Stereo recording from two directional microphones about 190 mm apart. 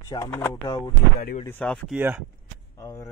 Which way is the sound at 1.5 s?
5° left (ahead or behind).